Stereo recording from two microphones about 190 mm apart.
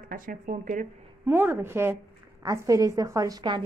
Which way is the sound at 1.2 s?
10° right (ahead or behind).